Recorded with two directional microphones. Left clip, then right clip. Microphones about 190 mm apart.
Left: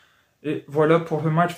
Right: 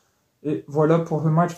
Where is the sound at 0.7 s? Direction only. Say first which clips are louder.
Left 1 dB; 20° left (ahead or behind).